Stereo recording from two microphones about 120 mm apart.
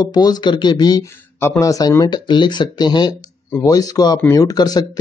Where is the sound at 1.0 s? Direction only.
20° left (ahead or behind).